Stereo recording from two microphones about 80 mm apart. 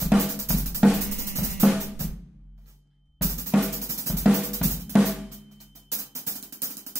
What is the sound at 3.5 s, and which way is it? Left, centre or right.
Drum, centre.